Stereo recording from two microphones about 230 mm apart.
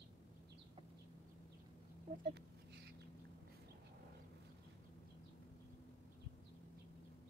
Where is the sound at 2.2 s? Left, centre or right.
Right.